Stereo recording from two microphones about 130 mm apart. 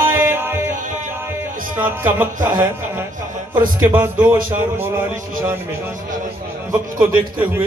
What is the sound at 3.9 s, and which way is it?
Mantra, 15° right (ahead or behind).